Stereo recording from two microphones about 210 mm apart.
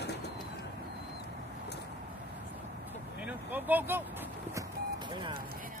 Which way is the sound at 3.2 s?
10° right (ahead or behind).